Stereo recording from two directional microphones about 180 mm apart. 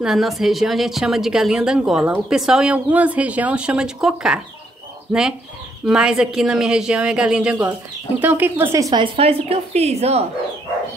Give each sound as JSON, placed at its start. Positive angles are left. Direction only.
{"t": 0.0, "sound": "a woman's voice", "side_deg": 0}
{"t": 5.9, "sound": "a woman's voice", "side_deg": -5}
{"t": 9.1, "sound": "a woman's voice", "side_deg": -35}